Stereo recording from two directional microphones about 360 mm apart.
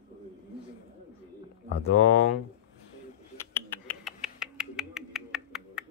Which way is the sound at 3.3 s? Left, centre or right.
Centre.